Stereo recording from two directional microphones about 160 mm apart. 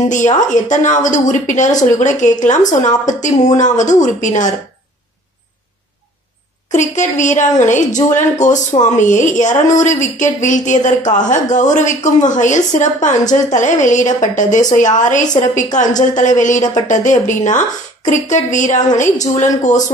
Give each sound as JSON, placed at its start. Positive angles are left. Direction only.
{"t": 0.1, "sound": "a woman's voice", "side_deg": 50}
{"t": 6.7, "sound": "a woman's voice", "side_deg": 50}